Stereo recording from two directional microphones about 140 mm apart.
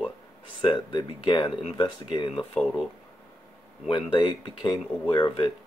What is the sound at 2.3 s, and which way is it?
Speech, centre (ahead or behind).